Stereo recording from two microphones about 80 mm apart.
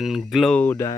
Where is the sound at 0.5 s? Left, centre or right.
Left.